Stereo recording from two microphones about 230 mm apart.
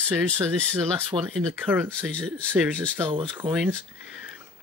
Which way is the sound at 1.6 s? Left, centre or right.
Centre.